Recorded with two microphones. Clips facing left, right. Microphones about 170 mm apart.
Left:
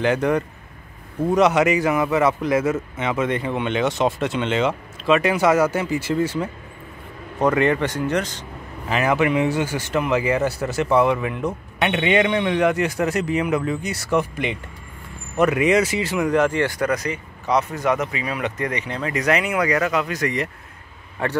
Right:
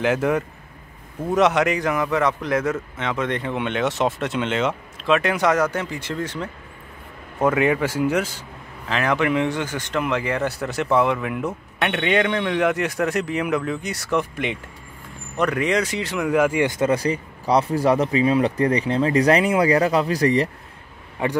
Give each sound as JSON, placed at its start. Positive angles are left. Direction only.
{"t": 0.0, "sound": "speech", "side_deg": -5}
{"t": 7.3, "sound": "speech", "side_deg": -5}
{"t": 8.8, "sound": "speech", "side_deg": 5}
{"t": 16.7, "sound": "speech", "side_deg": -25}
{"t": 21.2, "sound": "speech", "side_deg": -15}